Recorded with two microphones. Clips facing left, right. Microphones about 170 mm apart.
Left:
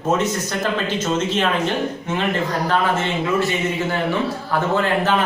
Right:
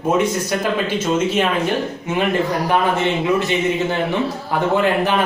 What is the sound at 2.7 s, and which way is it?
Speech, 20° right (ahead or behind).